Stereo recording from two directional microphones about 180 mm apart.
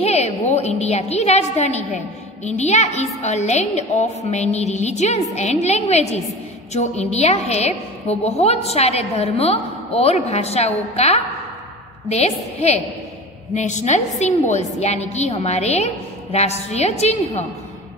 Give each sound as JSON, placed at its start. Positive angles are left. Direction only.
{"t": 0.0, "sound": "a woman's voice", "side_deg": 35}